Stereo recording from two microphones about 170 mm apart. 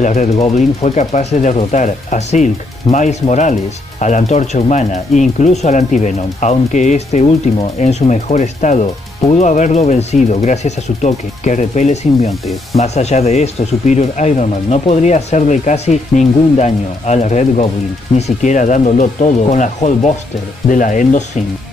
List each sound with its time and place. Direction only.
0.0 s speech: 45° left (ahead or behind)